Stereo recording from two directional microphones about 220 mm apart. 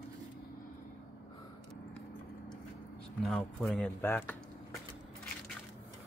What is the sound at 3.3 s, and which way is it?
Speech, 5° left (ahead or behind).